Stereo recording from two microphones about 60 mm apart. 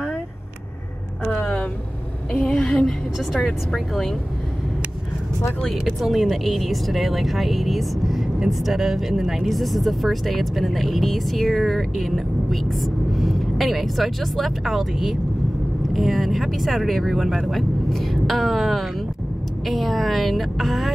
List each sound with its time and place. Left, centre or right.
2.3 s speech: centre
5.9 s speech: centre